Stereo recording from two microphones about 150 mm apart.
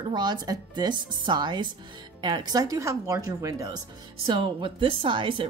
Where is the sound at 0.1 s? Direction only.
30° right (ahead or behind).